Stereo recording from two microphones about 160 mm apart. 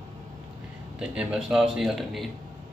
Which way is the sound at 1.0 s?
5° right (ahead or behind).